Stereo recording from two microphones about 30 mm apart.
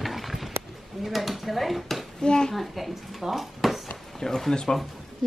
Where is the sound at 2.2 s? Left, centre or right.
Left.